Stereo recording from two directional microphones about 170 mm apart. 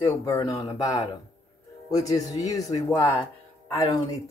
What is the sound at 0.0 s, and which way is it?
Speech, 15° left (ahead or behind).